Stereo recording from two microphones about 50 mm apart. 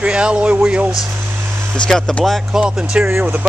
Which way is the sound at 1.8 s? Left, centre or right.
Centre.